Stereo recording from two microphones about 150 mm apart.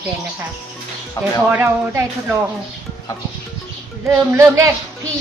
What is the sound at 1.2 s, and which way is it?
Speech, 25° left (ahead or behind).